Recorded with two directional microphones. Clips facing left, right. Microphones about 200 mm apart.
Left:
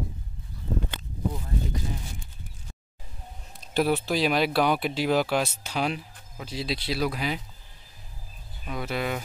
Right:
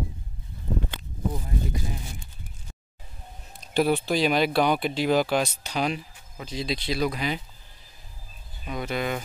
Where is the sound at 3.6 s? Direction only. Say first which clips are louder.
Right 1 dB; centre (ahead or behind).